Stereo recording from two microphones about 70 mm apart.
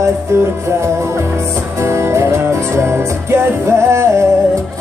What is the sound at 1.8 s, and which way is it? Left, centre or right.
Music, right.